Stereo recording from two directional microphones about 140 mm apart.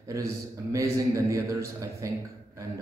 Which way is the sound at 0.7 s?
20° right (ahead or behind).